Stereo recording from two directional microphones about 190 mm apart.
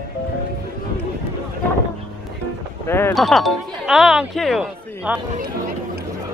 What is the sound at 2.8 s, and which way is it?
Speech, 10° left (ahead or behind).